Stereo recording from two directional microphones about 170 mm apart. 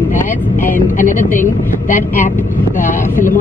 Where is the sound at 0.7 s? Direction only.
50° left (ahead or behind).